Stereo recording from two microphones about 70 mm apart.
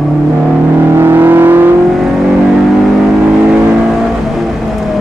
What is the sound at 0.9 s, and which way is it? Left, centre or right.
Vehicle, right.